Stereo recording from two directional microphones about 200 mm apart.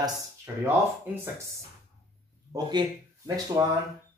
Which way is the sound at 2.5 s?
20° right (ahead or behind).